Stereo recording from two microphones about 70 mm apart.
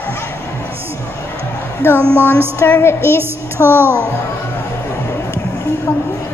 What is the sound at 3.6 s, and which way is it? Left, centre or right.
Speech, right.